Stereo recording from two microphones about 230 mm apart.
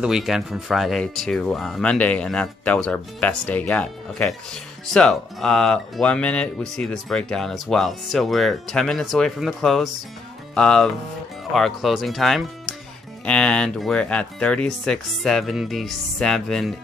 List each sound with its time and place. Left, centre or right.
0.0 s speech: centre